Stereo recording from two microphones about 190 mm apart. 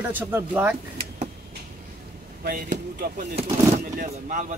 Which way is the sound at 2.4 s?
50° right (ahead or behind).